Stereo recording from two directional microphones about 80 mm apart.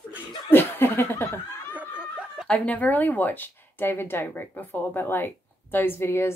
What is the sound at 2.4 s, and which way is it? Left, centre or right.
Speech, centre.